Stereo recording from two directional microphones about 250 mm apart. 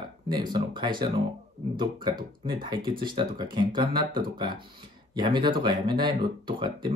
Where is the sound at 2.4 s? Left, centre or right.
Centre.